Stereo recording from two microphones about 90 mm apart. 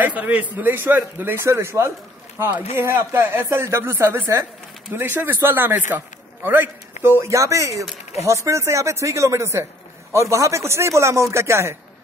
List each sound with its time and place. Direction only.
0.0 s a man's voice: 20° right (ahead or behind)